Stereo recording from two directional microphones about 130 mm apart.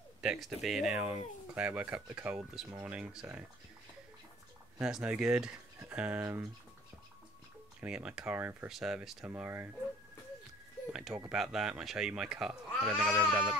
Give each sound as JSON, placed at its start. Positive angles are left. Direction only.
{"t": 0.2, "sound": "speech", "side_deg": -5}
{"t": 4.7, "sound": "speech", "side_deg": -5}
{"t": 7.8, "sound": "speech", "side_deg": -10}
{"t": 9.2, "sound": "speech", "side_deg": -15}
{"t": 10.9, "sound": "speech", "side_deg": -5}